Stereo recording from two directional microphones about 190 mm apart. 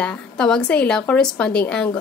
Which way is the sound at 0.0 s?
5° left (ahead or behind).